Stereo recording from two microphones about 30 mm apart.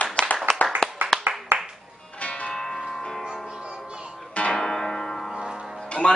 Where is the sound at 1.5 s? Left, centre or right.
Right.